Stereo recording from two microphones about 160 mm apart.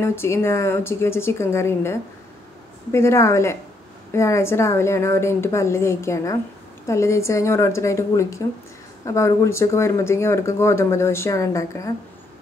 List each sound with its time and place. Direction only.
0.0 s speech: 15° left (ahead or behind)